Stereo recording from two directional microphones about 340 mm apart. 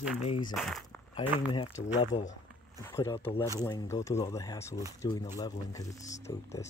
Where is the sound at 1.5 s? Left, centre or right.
Centre.